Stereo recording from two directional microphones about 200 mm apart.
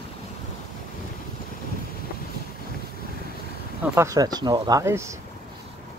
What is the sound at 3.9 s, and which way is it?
Speech, 15° right (ahead or behind).